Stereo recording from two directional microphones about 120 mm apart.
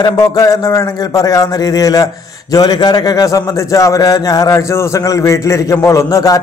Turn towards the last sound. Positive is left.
turn(degrees=30)  # may be behind; listen again after turning